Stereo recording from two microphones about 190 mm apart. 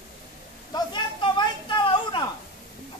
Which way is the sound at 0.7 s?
20° left (ahead or behind).